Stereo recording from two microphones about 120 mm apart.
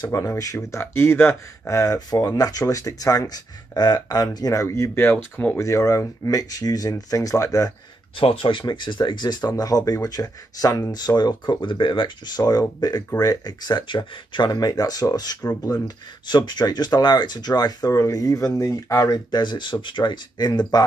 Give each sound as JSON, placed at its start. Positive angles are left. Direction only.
{"t": 0.0, "sound": "speech", "side_deg": 30}
{"t": 5.6, "sound": "speech", "side_deg": 25}
{"t": 8.2, "sound": "speech", "side_deg": 50}